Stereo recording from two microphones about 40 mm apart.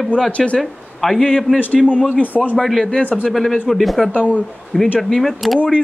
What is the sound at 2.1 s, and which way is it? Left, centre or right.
Speech, left.